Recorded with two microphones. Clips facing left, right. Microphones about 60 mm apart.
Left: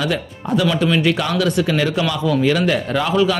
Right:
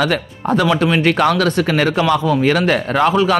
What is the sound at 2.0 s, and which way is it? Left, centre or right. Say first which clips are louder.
A man's voice: right 3 dB; right.